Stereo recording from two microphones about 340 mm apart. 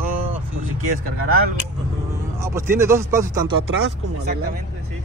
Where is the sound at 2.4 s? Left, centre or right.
Centre.